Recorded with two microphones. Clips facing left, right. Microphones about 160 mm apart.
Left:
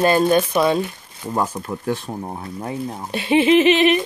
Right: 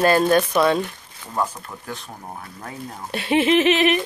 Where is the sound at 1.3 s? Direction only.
30° left (ahead or behind).